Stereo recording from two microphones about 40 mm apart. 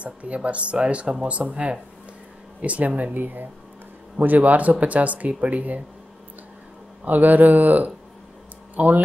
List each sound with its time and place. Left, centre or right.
0.0 s speech: right
7.1 s speech: right